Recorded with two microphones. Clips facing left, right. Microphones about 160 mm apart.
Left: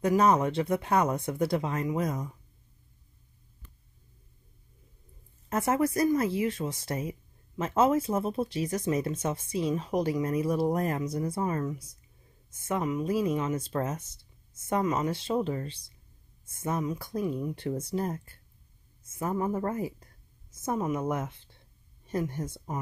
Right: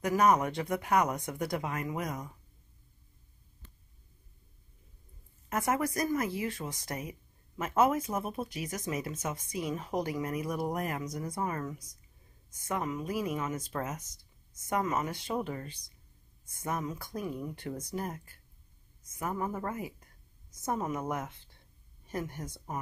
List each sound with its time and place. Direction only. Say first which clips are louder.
0.0 s speech: left 3 dB; 25° left (ahead or behind)
5.5 s speech: left 4 dB; 25° left (ahead or behind)
9.8 s speech: left 5 dB; 20° left (ahead or behind); by 20.1 s 35° left (ahead or behind)
20.5 s speech: left 4 dB; 20° left (ahead or behind)